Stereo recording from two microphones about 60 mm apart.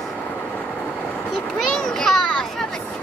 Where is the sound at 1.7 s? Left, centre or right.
Centre.